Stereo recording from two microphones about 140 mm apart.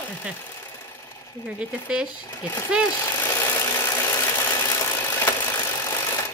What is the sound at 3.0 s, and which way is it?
Engine, 15° left (ahead or behind).